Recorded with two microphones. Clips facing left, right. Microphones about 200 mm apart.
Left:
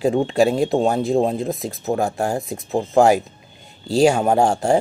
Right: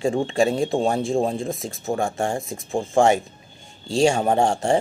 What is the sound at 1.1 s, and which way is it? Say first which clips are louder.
Speech: left 3 dB; 35° left (ahead or behind).